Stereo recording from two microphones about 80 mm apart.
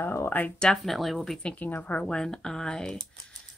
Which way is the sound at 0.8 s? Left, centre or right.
Centre.